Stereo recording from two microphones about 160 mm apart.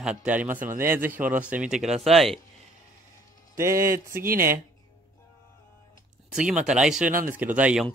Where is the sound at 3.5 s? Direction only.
15° right (ahead or behind).